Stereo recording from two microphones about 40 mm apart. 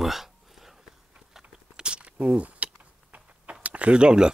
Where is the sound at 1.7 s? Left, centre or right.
Right.